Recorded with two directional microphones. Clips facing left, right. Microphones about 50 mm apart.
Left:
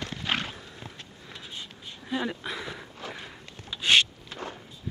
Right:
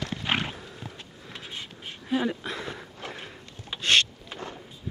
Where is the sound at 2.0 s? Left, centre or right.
Centre.